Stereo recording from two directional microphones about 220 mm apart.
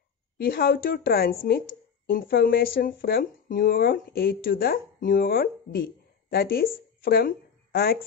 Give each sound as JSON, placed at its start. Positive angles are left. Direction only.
{"t": 0.4, "sound": "a woman's voice", "side_deg": 45}